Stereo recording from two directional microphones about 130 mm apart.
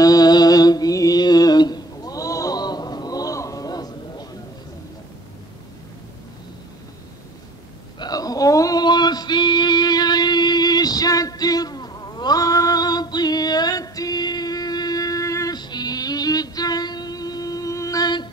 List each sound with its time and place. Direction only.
0.0 s music: 30° left (ahead or behind)
8.0 s male singing: 30° left (ahead or behind)